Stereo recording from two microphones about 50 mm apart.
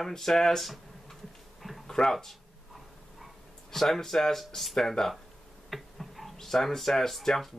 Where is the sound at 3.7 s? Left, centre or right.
Centre.